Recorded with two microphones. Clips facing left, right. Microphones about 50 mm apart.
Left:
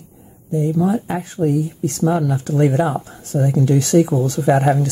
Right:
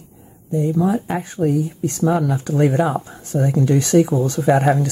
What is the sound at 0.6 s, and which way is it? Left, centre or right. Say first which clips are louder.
Speech: even; centre.